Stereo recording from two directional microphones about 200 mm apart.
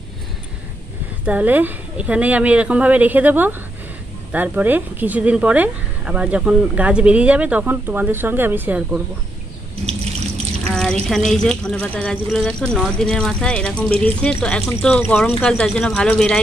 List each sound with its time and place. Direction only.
1.2 s speech: 10° right (ahead or behind)
9.8 s water: 30° right (ahead or behind)
10.7 s speech: centre (ahead or behind)